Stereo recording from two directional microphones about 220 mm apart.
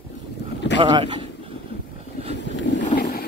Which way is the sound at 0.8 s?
20° right (ahead or behind).